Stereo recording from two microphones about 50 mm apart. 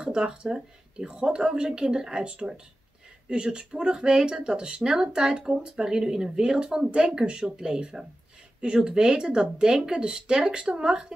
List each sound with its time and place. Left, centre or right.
0.0 s speech: centre